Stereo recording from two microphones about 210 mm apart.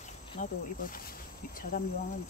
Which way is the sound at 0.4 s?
40° left (ahead or behind).